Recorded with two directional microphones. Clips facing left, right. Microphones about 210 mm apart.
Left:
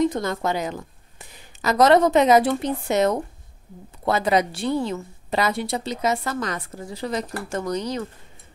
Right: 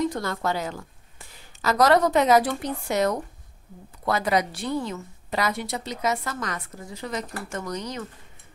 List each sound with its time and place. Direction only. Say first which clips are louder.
0.0 s a woman's voice: left 4 dB; 20° left (ahead or behind)